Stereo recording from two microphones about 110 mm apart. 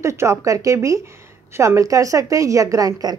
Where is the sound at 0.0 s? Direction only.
25° right (ahead or behind).